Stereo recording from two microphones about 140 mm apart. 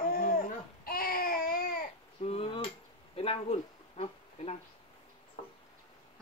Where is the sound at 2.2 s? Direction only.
45° left (ahead or behind).